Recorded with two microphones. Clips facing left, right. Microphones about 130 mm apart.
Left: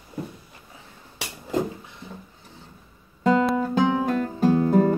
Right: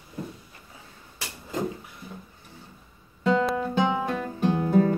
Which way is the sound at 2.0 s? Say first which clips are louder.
Left 2 dB; 25° left (ahead or behind).